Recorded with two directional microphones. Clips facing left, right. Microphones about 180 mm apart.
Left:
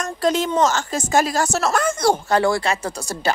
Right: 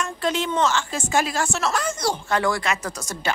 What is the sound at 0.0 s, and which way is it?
Speech, 40° left (ahead or behind).